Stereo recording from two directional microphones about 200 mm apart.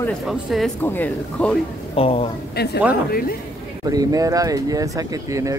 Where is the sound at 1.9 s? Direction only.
30° left (ahead or behind).